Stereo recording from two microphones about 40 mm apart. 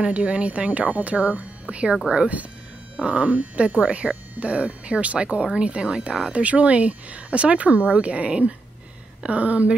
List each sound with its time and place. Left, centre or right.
0.0 s speech: right
3.0 s speech: right